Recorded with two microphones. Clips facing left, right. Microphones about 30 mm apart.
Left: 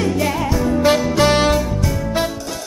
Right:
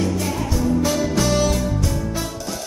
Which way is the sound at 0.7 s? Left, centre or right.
Left.